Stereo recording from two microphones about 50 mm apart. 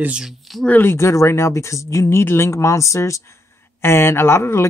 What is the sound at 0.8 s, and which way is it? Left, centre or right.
Speech, left.